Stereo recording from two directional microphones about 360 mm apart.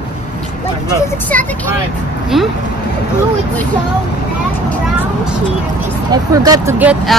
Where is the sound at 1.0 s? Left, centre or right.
Centre.